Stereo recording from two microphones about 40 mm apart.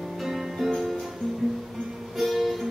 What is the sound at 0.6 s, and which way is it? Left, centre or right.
Music, centre.